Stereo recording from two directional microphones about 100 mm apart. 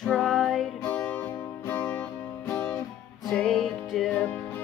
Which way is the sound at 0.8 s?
20° left (ahead or behind).